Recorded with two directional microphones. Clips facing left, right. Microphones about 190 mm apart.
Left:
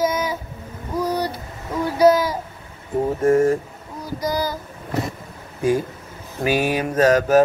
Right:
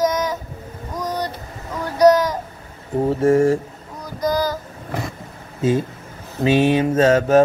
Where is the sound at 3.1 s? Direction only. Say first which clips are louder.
Right 1 dB; 30° right (ahead or behind).